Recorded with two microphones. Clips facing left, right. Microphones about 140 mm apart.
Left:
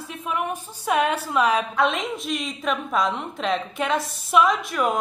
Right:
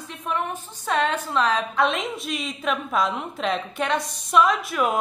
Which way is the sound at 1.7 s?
Centre (ahead or behind).